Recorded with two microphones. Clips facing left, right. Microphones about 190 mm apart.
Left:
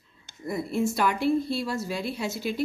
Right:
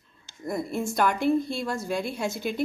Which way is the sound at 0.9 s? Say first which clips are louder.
Right 1 dB; 45° right (ahead or behind).